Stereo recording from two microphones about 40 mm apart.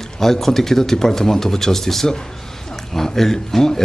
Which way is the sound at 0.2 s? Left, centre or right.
Centre.